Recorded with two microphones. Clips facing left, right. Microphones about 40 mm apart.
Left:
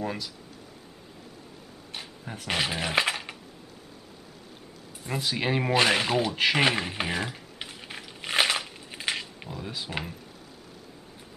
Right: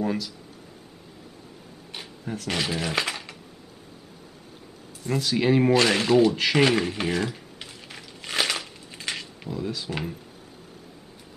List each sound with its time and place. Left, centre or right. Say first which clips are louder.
0.0 s speech: right 5 dB; centre
2.4 s speech: even; centre
5.0 s speech: right 5 dB; centre
7.5 s a sound: left 2 dB; left